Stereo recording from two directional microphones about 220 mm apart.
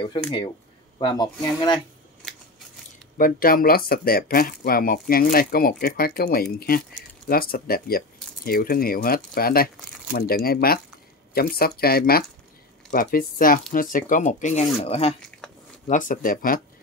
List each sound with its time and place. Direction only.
0.9 s speech: 20° left (ahead or behind)
2.2 s scissors: centre (ahead or behind)
3.2 s speech: 40° left (ahead or behind)
15.9 s speech: 35° left (ahead or behind)